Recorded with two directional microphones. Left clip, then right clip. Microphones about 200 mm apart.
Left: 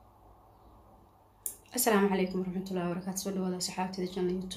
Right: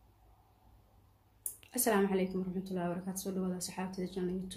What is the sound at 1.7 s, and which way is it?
Speech, 10° right (ahead or behind).